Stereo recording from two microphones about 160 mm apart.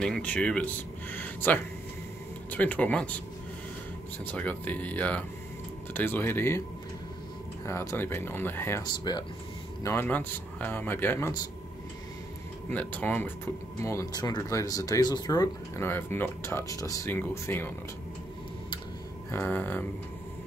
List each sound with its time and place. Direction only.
0.0 s speech: 5° left (ahead or behind)
4.2 s speech: 10° left (ahead or behind)
7.6 s speech: 15° left (ahead or behind)
8.8 s speech: 25° left (ahead or behind)
9.8 s speech: 10° left (ahead or behind)
12.6 s speech: 10° left (ahead or behind)
15.9 s speech: 15° left (ahead or behind)
19.3 s speech: 15° left (ahead or behind)